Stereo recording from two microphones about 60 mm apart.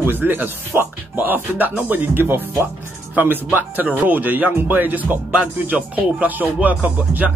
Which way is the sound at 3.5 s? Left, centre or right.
Right.